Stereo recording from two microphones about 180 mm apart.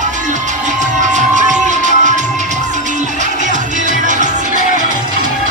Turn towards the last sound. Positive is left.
turn(degrees=-45)  # may be behind; listen again after turning